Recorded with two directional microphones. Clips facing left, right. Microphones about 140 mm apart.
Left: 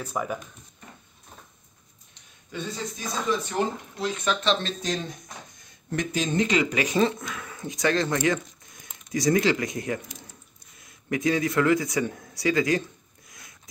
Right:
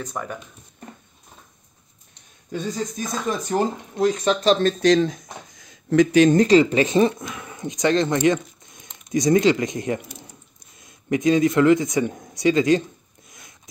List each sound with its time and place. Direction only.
0.0 s speech: 5° left (ahead or behind)
2.5 s speech: 40° right (ahead or behind)
4.8 s speech: 90° right
6.3 s speech: 35° right (ahead or behind)